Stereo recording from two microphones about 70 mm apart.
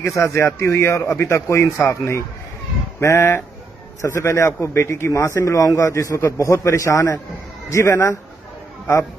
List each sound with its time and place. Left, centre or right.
0.0 s a man's voice: left
7.7 s a man's voice: left